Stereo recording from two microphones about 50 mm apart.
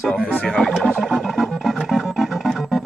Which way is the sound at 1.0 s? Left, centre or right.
Centre.